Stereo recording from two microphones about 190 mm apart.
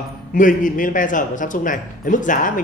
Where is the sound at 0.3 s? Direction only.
45° left (ahead or behind).